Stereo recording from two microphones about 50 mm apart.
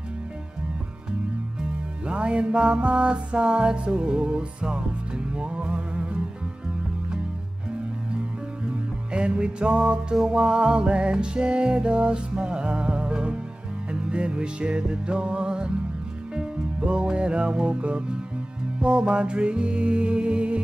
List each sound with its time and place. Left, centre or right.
1.6 s music: right
9.1 s music: right